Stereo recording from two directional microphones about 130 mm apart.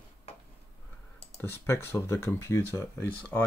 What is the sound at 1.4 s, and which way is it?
Speech, 20° left (ahead or behind).